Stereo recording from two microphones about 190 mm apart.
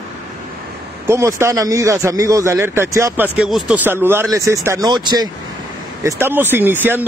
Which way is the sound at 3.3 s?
5° right (ahead or behind).